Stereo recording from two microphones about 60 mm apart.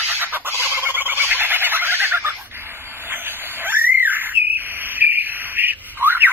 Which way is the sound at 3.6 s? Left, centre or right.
Right.